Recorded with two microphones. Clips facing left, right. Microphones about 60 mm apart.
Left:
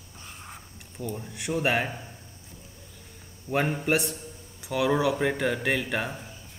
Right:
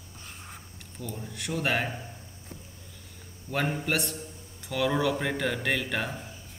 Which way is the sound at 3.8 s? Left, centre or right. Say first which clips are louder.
Left 4 dB; centre.